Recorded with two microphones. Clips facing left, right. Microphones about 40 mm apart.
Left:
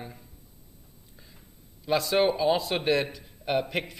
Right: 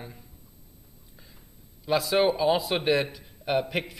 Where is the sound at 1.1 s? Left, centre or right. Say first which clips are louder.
Even; centre.